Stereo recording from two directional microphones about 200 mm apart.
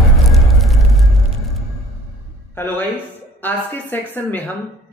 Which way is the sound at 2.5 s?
10° left (ahead or behind).